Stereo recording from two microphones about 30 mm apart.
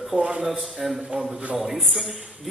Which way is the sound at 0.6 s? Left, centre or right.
Centre.